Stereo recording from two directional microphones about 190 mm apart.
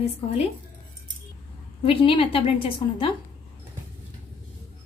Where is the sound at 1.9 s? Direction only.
30° left (ahead or behind).